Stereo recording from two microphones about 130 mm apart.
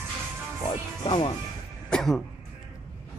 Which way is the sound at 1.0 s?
40° left (ahead or behind).